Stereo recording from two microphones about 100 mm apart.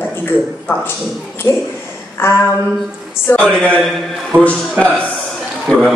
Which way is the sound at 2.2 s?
25° left (ahead or behind).